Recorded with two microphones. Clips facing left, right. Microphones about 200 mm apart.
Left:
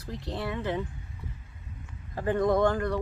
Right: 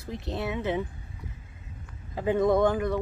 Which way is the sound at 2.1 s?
15° right (ahead or behind).